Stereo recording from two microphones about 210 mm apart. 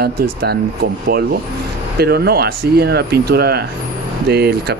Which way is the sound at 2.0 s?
50° right (ahead or behind).